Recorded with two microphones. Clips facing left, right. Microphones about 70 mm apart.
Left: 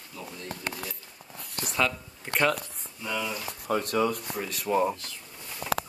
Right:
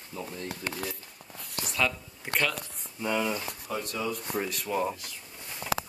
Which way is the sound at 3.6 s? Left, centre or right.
Left.